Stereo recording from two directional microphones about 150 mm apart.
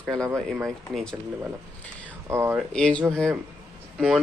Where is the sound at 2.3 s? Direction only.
15° right (ahead or behind).